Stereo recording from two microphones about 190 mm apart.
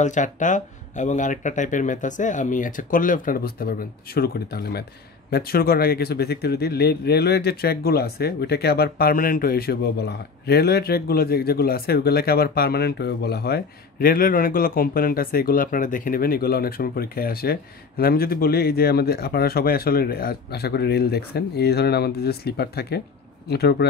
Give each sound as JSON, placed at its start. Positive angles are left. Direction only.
{"t": 0.0, "sound": "speech", "side_deg": 40}